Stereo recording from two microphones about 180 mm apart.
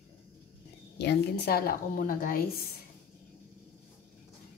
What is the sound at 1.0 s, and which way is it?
Speech, 65° left (ahead or behind).